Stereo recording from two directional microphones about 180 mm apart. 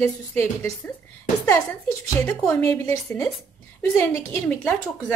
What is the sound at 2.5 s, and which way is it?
A woman's voice, 15° left (ahead or behind).